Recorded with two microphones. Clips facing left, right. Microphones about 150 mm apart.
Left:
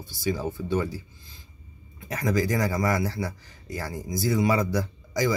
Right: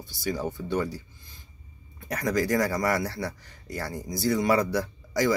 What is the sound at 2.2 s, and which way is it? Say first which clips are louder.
Speech: even; 45° right (ahead or behind).